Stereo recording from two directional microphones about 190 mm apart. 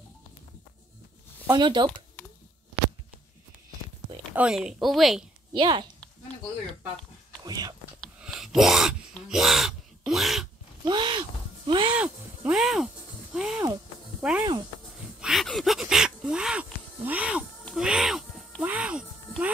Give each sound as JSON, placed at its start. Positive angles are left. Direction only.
{"t": 1.5, "sound": "speech", "side_deg": -25}
{"t": 4.3, "sound": "speech", "side_deg": -5}
{"t": 5.5, "sound": "speech", "side_deg": -25}
{"t": 7.4, "sound": "whispering", "side_deg": -20}
{"t": 8.0, "sound": "gasp", "side_deg": 0}
{"t": 10.9, "sound": "a sound", "side_deg": -25}
{"t": 12.0, "sound": "music", "side_deg": -5}
{"t": 14.2, "sound": "speech", "side_deg": -5}
{"t": 15.1, "sound": "a sound", "side_deg": 0}